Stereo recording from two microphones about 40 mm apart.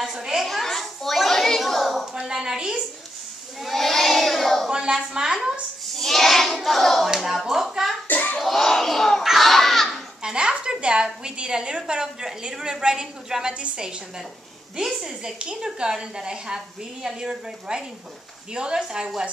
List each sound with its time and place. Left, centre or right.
0.0 s a woman's voice: centre
0.4 s children playing: centre
1.8 s a sound: centre
2.2 s a woman's voice: centre
3.6 s child singing: centre
4.6 s a woman's voice: centre
5.9 s hands: centre
7.1 s a woman's voice: centre
8.1 s hands: left
8.4 s battle cry: centre
9.2 s children playing: centre
10.2 s a sound: right
11.2 s a woman's voice: right